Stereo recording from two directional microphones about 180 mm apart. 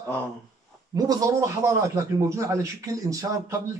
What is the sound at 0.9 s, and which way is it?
A man's voice, 20° right (ahead or behind).